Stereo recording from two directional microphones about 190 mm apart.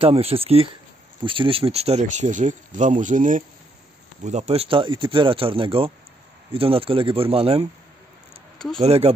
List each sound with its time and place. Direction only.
0.0 s speech: 30° right (ahead or behind)
8.7 s speech: 30° right (ahead or behind)